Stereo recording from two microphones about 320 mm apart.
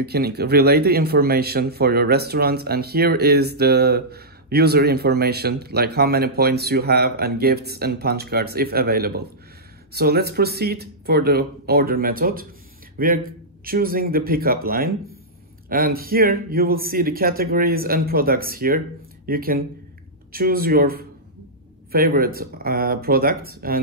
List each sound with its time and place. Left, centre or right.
0.0 s speech: right